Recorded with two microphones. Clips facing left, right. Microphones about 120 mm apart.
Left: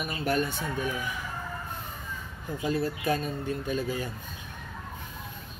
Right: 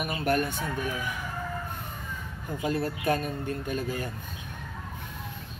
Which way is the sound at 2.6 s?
55° right (ahead or behind).